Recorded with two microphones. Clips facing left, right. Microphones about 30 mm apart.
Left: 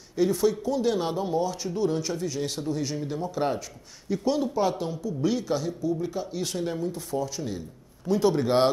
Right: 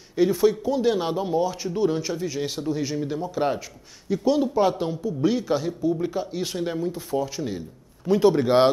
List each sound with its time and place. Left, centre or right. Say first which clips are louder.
0.1 s speech: right 4 dB; centre